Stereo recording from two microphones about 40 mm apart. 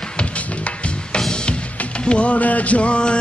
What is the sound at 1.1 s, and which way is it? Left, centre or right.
Music, centre.